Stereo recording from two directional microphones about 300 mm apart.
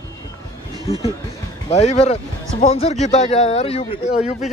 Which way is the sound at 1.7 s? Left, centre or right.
Left.